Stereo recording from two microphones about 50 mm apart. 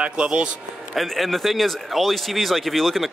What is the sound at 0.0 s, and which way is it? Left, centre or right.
Speech, centre.